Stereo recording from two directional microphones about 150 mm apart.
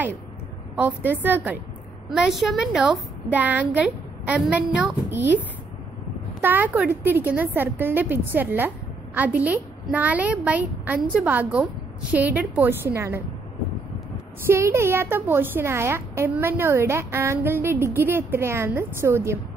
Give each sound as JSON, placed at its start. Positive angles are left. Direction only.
{"t": 0.7, "sound": "a woman's voice", "side_deg": -10}
{"t": 6.4, "sound": "a woman's voice", "side_deg": -10}
{"t": 14.5, "sound": "a woman's voice", "side_deg": -15}